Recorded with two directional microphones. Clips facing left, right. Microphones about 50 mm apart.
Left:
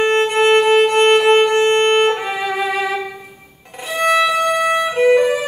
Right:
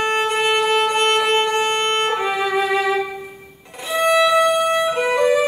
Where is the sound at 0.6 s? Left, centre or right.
Centre.